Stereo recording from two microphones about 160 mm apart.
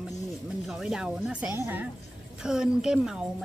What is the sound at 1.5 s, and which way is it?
Speech, 15° right (ahead or behind).